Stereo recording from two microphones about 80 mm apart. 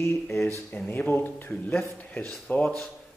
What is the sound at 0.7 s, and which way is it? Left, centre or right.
A man's voice, left.